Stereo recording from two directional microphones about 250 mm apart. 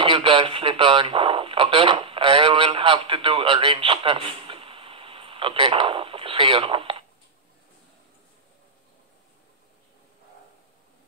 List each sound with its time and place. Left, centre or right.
0.0 s speech: right